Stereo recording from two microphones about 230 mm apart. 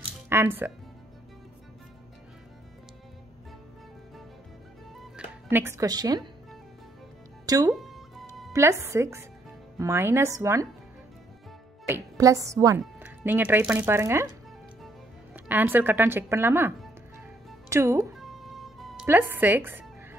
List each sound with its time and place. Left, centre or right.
0.3 s a woman's voice: centre
4.9 s music: centre
7.4 s speech: centre
7.7 s music: centre
8.5 s a woman's voice: centre
11.9 s a woman's voice: centre
15.3 s a woman's voice: centre
18.1 s music: centre